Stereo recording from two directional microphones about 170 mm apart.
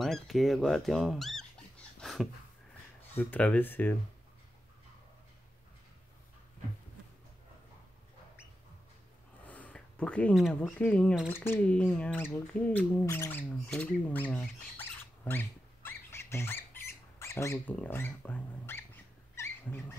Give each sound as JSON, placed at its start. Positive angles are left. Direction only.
{"t": 0.0, "sound": "speech", "side_deg": 0}
{"t": 9.5, "sound": "a sound", "side_deg": 10}
{"t": 10.5, "sound": "speech", "side_deg": 10}
{"t": 15.2, "sound": "squawk", "side_deg": 10}
{"t": 17.2, "sound": "speech", "side_deg": 15}
{"t": 19.3, "sound": "owl", "side_deg": 15}